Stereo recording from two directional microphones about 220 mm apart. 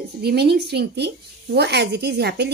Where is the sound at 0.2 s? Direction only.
45° right (ahead or behind).